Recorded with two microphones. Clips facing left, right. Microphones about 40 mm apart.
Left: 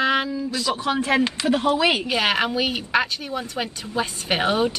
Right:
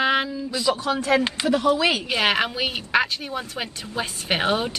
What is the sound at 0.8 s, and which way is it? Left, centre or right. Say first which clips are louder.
A woman's voice: left 4 dB; left.